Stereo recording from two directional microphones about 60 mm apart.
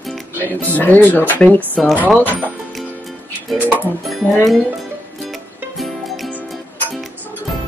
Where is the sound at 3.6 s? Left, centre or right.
Right.